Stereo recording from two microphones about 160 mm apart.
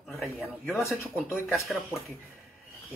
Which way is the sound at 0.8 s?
15° left (ahead or behind).